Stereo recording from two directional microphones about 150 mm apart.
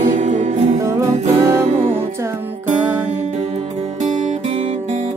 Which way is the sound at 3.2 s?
50° right (ahead or behind).